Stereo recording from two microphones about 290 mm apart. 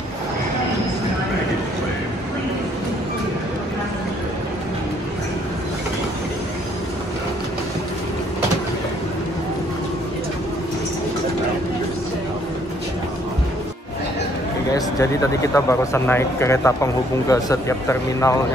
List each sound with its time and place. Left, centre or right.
14.7 s speech: centre